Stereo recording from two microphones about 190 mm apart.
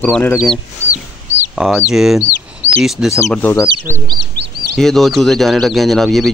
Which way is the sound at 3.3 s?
10° left (ahead or behind).